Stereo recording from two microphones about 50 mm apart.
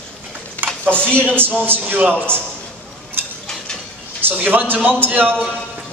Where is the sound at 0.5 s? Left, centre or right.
Right.